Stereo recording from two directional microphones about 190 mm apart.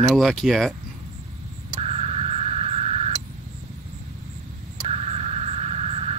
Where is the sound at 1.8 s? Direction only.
35° right (ahead or behind).